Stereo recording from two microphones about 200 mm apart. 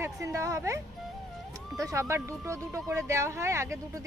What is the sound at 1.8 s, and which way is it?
Speech, 15° right (ahead or behind).